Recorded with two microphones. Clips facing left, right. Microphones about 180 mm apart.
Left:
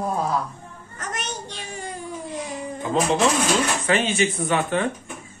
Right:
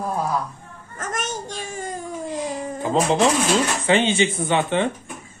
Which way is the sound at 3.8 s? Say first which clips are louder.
Right 3 dB; 25° right (ahead or behind).